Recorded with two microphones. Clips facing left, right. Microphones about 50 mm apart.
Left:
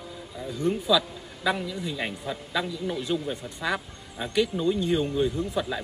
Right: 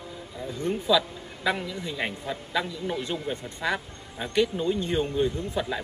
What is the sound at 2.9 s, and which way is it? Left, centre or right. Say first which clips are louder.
Speech: left 2 dB; right.